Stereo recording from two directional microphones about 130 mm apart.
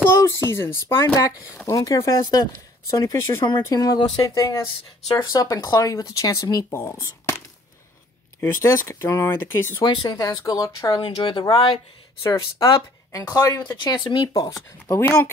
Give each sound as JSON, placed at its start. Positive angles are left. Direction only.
{"t": 0.2, "sound": "speech", "side_deg": 20}
{"t": 8.4, "sound": "speech", "side_deg": 20}
{"t": 9.8, "sound": "speech", "side_deg": 30}
{"t": 11.0, "sound": "speech", "side_deg": 40}
{"t": 12.2, "sound": "speech", "side_deg": 25}